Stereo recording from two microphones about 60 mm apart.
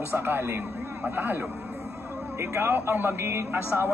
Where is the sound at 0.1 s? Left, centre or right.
Right.